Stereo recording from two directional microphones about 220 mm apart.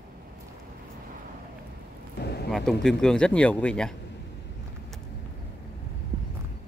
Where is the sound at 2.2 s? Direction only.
50° left (ahead or behind).